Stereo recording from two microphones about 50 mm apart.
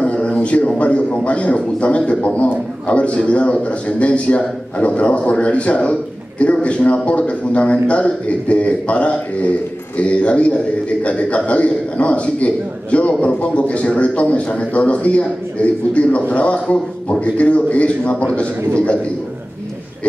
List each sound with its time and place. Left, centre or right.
0.0 s a man's voice: left